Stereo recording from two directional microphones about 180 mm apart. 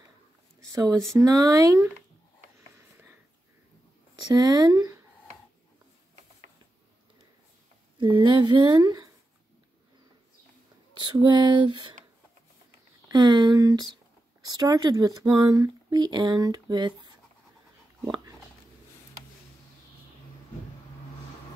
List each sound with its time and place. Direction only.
0.7 s speech: 15° right (ahead or behind)
4.3 s speech: 20° right (ahead or behind)
8.2 s speech: 25° right (ahead or behind)
11.0 s speech: 25° right (ahead or behind)
13.1 s speech: 20° right (ahead or behind)
18.0 s dog: 25° right (ahead or behind)